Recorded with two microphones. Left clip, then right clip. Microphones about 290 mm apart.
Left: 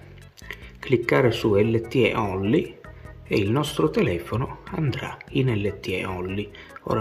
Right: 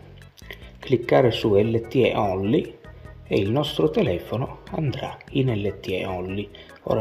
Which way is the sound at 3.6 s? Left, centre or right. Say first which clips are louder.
Right 1 dB; left.